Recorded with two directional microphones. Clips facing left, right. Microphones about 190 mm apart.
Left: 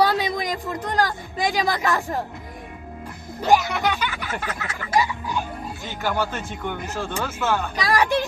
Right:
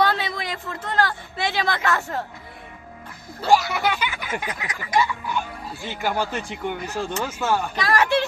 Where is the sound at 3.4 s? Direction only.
20° left (ahead or behind).